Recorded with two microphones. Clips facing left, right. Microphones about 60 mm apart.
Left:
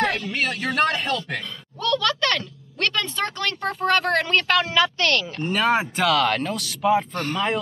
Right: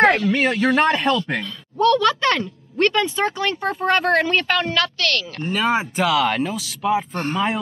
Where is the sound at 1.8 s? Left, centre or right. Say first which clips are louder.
Right 6 dB; right; by 4.7 s centre.